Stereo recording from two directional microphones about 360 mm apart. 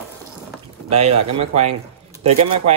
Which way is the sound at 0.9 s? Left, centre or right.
Centre.